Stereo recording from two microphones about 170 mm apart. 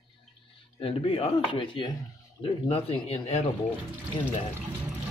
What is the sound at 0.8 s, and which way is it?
Speech, 30° left (ahead or behind).